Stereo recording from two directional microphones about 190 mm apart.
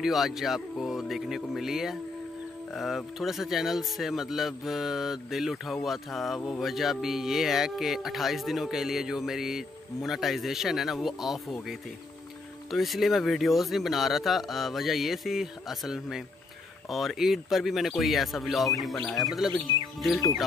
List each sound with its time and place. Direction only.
0.0 s speech: centre (ahead or behind)
12.7 s speech: centre (ahead or behind)